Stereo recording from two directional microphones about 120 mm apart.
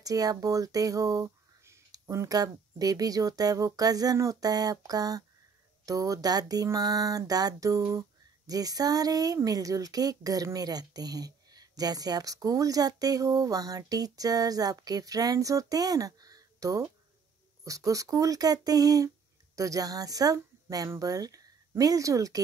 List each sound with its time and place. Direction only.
0.0 s speech: 30° right (ahead or behind)
5.9 s a sound: 30° right (ahead or behind)
8.5 s speech: 30° right (ahead or behind)